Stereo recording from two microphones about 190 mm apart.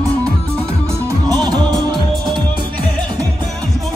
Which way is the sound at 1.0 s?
20° right (ahead or behind).